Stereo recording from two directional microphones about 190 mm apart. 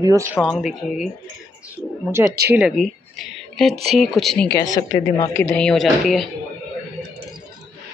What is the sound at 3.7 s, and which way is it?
Speech, 30° right (ahead or behind).